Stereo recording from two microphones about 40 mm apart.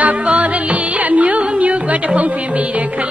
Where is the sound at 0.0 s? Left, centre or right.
Right.